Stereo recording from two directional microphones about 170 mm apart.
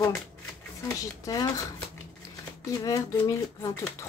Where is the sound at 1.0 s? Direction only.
20° left (ahead or behind).